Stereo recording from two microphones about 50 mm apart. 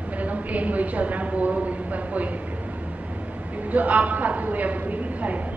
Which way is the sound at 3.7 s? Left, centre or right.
Right.